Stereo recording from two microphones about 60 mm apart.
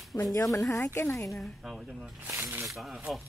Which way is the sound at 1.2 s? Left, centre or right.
Centre.